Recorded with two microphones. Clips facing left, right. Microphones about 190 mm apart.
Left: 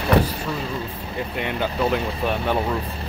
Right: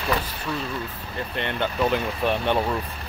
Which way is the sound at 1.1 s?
5° left (ahead or behind).